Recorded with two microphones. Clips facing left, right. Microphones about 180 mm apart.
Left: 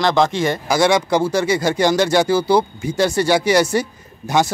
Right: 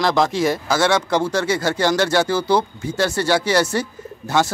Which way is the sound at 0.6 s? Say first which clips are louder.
Left 2 dB; 15° left (ahead or behind).